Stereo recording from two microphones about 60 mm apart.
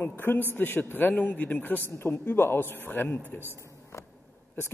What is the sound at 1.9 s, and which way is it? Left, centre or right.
A man's voice, left.